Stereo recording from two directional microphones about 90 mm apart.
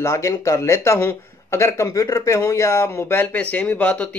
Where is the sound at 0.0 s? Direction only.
35° left (ahead or behind).